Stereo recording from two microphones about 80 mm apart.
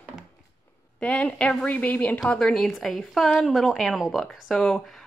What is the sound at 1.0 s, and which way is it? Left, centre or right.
A woman's voice, centre.